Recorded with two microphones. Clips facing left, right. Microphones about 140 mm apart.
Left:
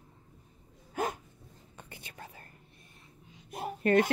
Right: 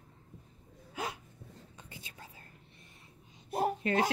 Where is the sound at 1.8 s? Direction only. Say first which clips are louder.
Left 6 dB; 60° left (ahead or behind).